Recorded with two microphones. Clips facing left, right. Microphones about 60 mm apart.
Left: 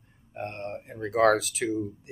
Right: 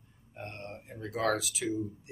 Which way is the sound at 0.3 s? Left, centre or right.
Left.